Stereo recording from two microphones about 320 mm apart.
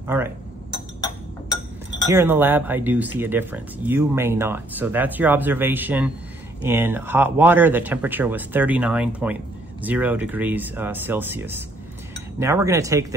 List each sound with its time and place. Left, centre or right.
0.0 s speech: centre
2.0 s speech: centre